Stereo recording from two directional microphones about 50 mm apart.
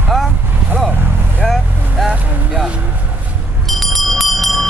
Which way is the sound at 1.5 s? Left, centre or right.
Centre.